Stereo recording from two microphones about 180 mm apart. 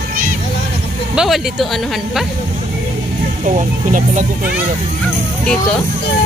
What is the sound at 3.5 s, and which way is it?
Speech, 45° right (ahead or behind).